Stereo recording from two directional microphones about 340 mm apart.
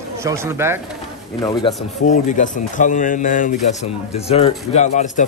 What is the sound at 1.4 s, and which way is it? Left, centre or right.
A man's voice, centre.